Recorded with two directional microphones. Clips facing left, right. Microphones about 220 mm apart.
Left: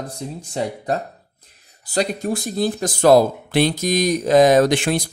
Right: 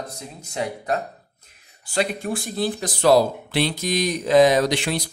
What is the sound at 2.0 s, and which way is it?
Speech, 40° left (ahead or behind).